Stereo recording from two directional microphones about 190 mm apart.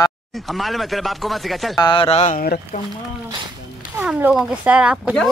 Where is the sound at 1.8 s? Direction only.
25° left (ahead or behind); by 2.6 s 50° left (ahead or behind).